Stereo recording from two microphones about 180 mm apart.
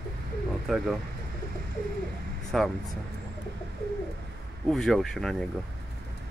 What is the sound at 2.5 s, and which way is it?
Speech, centre (ahead or behind).